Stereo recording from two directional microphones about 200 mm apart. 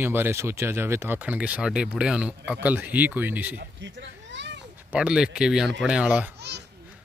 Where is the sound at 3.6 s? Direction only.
65° right (ahead or behind).